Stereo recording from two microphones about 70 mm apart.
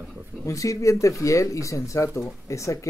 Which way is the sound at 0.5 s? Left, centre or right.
Left.